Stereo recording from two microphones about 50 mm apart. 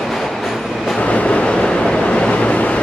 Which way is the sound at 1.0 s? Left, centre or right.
Left.